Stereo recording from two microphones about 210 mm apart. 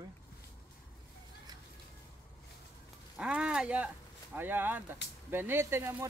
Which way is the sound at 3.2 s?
5° right (ahead or behind).